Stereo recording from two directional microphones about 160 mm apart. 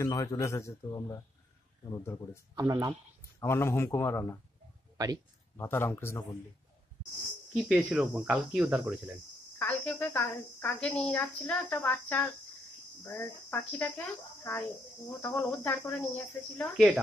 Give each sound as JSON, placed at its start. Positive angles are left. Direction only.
{"t": 0.0, "sound": "a man's voice", "side_deg": 20}
{"t": 2.5, "sound": "speech", "side_deg": -20}
{"t": 3.3, "sound": "a woman's voice", "side_deg": 15}
{"t": 4.9, "sound": "speech", "side_deg": -25}
{"t": 5.6, "sound": "a woman's voice", "side_deg": 15}
{"t": 7.5, "sound": "speech", "side_deg": -5}
{"t": 9.6, "sound": "a woman's voice", "side_deg": 10}
{"t": 16.7, "sound": "speech", "side_deg": -10}